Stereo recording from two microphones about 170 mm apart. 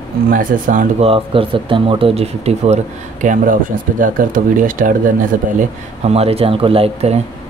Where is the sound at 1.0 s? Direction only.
35° right (ahead or behind).